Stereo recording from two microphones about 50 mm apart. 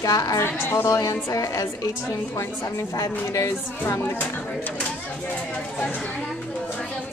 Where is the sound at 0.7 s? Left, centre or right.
Left.